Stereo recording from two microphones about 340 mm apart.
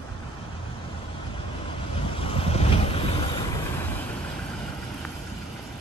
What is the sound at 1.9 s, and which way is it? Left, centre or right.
Boat, centre.